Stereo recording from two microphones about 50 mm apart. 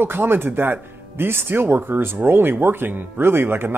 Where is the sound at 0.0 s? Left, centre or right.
Right.